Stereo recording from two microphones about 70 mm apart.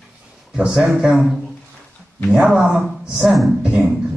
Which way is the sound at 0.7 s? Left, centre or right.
Centre.